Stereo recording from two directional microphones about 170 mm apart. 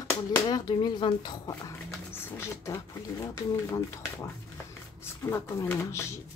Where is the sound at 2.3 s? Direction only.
15° left (ahead or behind).